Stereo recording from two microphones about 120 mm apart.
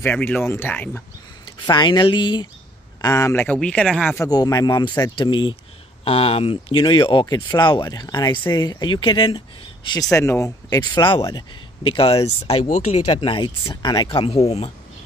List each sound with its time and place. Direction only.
0.0 s speech: 15° left (ahead or behind)
1.4 s speech: 40° left (ahead or behind)
3.0 s speech: 25° left (ahead or behind)
3.4 s speech: 10° left (ahead or behind)
4.1 s speech: 30° left (ahead or behind)
6.0 s speech: 55° left (ahead or behind)
10.1 s speech: 25° left (ahead or behind)
11.2 s speech: 40° left (ahead or behind); by 13.0 s 80° left
13.1 s speech: 45° left (ahead or behind)
14.1 s speech: 55° left (ahead or behind)